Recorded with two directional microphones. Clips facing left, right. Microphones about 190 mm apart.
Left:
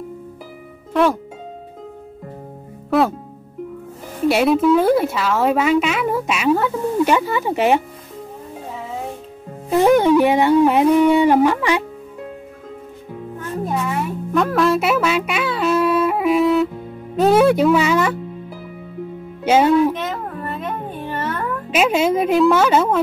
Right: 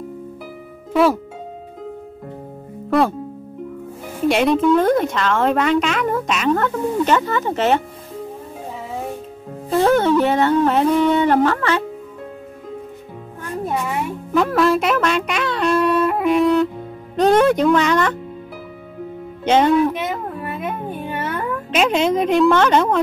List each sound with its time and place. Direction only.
2.9 s speech: centre (ahead or behind)
4.3 s a woman's voice: 5° left (ahead or behind)
9.7 s a woman's voice: 15° left (ahead or behind)
14.3 s a woman's voice: centre (ahead or behind)
19.4 s speech: 5° left (ahead or behind)
19.9 s a sound: 10° right (ahead or behind)
21.7 s a woman's voice: 5° left (ahead or behind)